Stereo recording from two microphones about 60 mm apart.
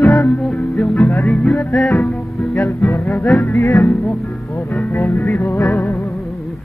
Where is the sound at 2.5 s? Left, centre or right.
Left.